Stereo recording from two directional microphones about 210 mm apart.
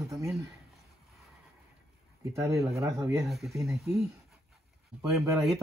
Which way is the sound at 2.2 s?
15° right (ahead or behind).